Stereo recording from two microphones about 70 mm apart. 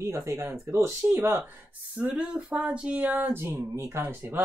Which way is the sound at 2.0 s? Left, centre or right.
Centre.